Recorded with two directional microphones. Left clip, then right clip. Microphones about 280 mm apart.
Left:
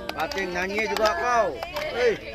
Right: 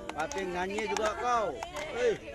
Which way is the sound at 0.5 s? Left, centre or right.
Right.